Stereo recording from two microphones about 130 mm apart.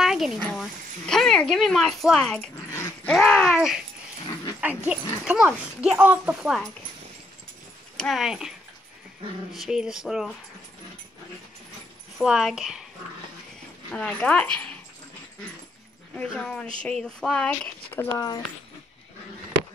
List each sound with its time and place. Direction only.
0.0 s speech: centre (ahead or behind)
3.1 s a sound: 5° left (ahead or behind)
3.5 s speech: 5° right (ahead or behind)
8.0 s speech: centre (ahead or behind)
12.2 s speech: 5° right (ahead or behind)
13.9 s speech: 10° left (ahead or behind)
16.2 s speech: 5° left (ahead or behind)
18.1 s speech: 30° left (ahead or behind)